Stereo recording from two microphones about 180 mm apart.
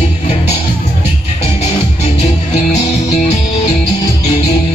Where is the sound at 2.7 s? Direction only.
40° left (ahead or behind).